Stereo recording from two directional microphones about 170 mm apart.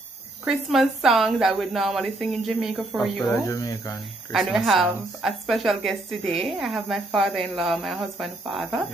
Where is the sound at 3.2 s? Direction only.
20° left (ahead or behind).